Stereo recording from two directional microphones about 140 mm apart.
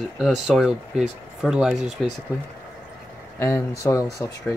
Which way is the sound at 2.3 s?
25° left (ahead or behind).